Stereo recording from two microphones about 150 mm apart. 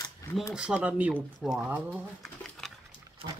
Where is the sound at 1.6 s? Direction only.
10° right (ahead or behind).